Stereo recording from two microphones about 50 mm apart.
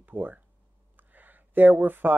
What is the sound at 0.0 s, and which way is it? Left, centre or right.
Speech, right.